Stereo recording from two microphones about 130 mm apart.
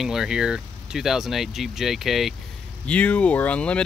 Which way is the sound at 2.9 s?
10° left (ahead or behind).